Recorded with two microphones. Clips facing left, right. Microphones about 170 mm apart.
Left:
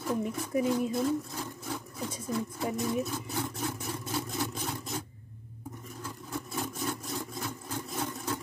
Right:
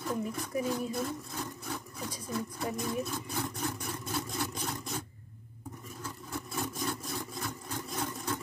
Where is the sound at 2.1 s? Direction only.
20° left (ahead or behind).